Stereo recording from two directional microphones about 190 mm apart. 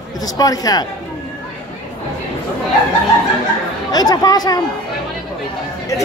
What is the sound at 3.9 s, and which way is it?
Speech, 20° left (ahead or behind).